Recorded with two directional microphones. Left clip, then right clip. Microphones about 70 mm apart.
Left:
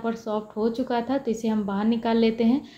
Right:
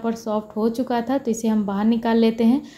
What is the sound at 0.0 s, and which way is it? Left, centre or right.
A woman's voice, right.